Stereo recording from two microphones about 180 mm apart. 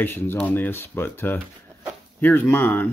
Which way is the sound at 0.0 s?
10° left (ahead or behind).